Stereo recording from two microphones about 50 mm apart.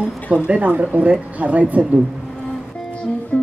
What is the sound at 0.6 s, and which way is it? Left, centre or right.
A woman's voice, right.